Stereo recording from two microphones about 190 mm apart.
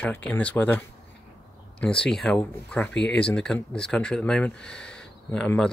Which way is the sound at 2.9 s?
70° left (ahead or behind).